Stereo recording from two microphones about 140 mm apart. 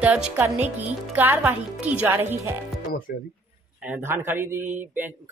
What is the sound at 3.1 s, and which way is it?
Speech, 90° left.